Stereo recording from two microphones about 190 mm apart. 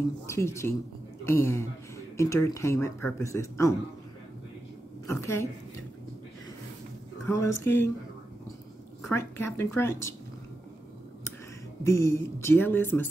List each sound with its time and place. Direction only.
0.3 s speech: 15° left (ahead or behind)
5.0 s speech: 15° left (ahead or behind)
7.2 s speech: 10° left (ahead or behind)
9.1 s speech: 15° left (ahead or behind)
11.8 s speech: 15° left (ahead or behind)